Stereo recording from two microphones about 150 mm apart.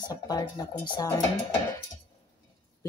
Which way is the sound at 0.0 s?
25° left (ahead or behind).